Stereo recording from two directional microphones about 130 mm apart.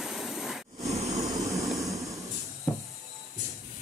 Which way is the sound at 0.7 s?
55° right (ahead or behind).